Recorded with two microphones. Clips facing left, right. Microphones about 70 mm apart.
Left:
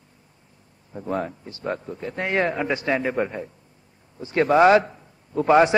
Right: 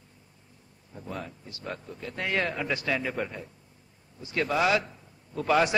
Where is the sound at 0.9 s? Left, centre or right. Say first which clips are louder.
Left 11 dB; left.